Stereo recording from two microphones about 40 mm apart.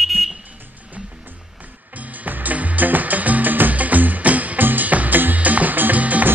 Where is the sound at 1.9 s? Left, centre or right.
Right.